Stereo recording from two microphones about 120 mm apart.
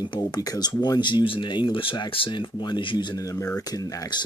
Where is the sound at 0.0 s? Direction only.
35° left (ahead or behind).